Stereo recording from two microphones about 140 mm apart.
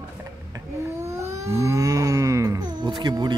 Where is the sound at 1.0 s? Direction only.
20° right (ahead or behind).